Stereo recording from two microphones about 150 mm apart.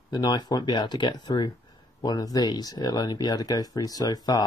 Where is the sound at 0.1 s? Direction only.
30° left (ahead or behind).